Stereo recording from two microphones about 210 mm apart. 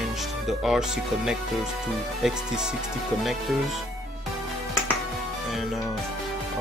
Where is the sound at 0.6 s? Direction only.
Centre (ahead or behind).